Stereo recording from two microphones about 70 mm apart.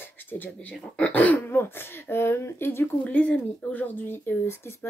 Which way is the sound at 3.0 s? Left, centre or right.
Left.